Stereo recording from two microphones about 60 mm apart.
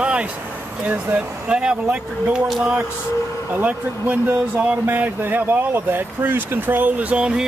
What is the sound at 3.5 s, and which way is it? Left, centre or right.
Speech, right.